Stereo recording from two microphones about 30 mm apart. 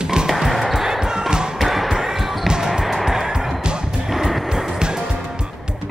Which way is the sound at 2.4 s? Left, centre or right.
Centre.